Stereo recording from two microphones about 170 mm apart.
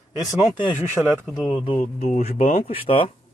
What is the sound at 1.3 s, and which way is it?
Speech, 5° right (ahead or behind).